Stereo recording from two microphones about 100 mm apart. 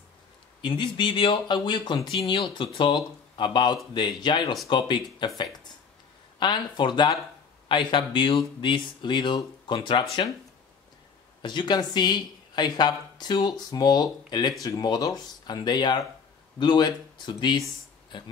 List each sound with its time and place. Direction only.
0.6 s speech: 55° left (ahead or behind)
6.4 s speech: 50° left (ahead or behind)
11.4 s speech: 50° left (ahead or behind)